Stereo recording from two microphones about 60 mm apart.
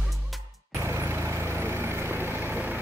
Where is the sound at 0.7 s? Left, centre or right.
Right.